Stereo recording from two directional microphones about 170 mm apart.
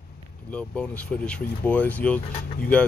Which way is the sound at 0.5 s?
5° left (ahead or behind).